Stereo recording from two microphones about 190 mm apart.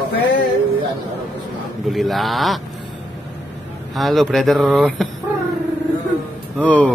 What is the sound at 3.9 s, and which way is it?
Speech, centre (ahead or behind).